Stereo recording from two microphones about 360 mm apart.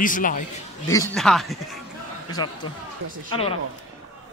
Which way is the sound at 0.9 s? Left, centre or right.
Centre.